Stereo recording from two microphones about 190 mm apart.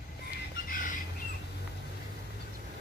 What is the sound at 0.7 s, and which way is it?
Bird, 45° left (ahead or behind).